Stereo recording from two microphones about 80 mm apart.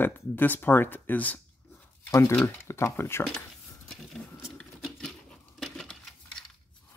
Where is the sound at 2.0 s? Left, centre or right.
Left.